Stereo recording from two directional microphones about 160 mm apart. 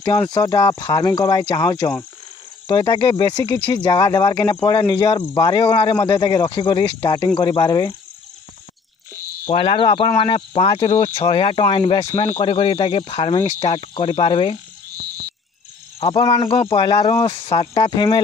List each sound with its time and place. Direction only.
0.3 s speech: 25° left (ahead or behind)
3.4 s speech: 15° left (ahead or behind)
3.7 s speech: 25° left (ahead or behind)
9.6 s speech: 35° left (ahead or behind)
16.0 s speech: 35° left (ahead or behind)